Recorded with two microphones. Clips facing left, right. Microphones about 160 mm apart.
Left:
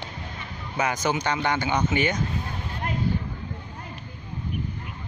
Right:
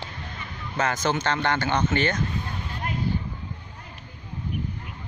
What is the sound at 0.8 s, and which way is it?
Speech, 10° left (ahead or behind).